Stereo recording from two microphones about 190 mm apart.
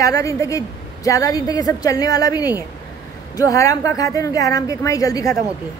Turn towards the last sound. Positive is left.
turn(degrees=20)  # may be behind; listen again after turning